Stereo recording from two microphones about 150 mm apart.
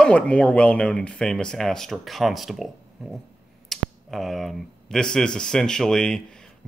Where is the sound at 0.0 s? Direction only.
10° left (ahead or behind).